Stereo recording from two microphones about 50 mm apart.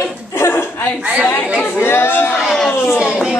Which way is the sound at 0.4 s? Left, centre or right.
Left.